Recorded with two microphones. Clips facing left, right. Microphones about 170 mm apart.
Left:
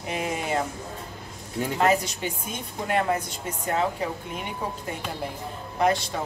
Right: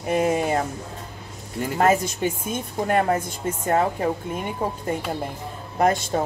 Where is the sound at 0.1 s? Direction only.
45° right (ahead or behind).